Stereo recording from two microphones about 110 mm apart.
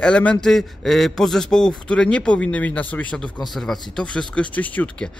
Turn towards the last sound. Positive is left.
turn(degrees=15)  # may be behind; listen again after turning